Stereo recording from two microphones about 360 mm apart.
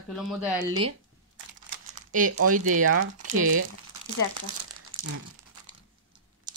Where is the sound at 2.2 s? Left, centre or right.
Right.